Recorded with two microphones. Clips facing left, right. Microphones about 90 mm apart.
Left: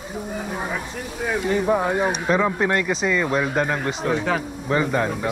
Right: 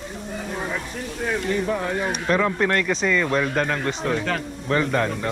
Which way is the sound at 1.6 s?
20° left (ahead or behind).